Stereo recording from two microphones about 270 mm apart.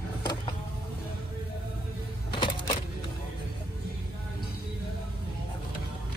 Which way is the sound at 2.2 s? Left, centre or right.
Centre.